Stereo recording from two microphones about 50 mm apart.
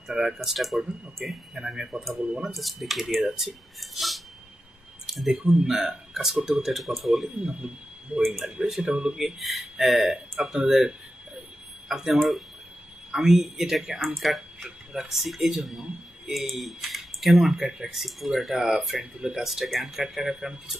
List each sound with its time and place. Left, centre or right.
0.1 s speech: centre
2.4 s speech: centre
5.3 s speech: centre
7.4 s speech: centre